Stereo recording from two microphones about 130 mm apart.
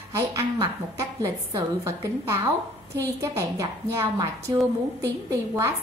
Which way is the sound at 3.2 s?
20° right (ahead or behind).